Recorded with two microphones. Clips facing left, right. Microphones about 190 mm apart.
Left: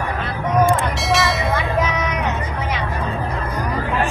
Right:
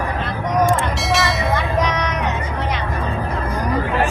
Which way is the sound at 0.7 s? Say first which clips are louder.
Even; centre (ahead or behind).